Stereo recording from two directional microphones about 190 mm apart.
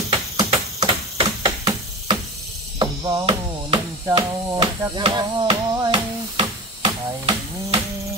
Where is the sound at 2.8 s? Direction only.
20° right (ahead or behind).